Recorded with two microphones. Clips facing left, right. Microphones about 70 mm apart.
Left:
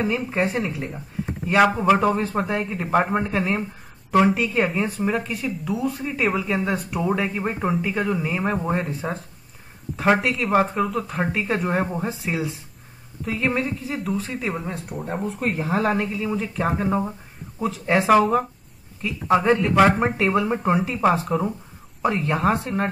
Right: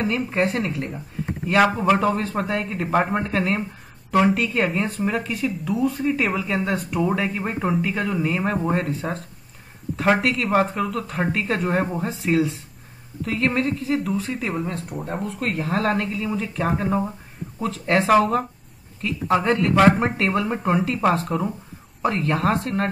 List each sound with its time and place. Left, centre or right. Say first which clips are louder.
0.0 s speech: right 1 dB; centre
15.6 s speech: even; centre